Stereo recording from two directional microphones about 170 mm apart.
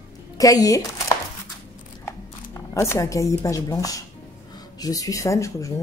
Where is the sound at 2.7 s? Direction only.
15° left (ahead or behind).